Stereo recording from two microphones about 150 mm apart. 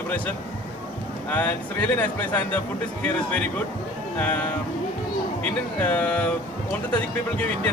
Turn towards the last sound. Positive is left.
turn(degrees=10)  # may be behind; listen again after turning